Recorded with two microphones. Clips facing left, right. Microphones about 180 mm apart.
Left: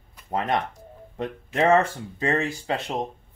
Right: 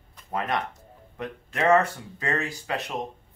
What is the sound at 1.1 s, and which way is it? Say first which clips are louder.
Speech: left 5 dB; 30° left (ahead or behind).